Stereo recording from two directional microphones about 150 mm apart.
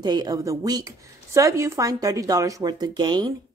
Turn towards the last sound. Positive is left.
turn(degrees=-30)  # may be behind; listen again after turning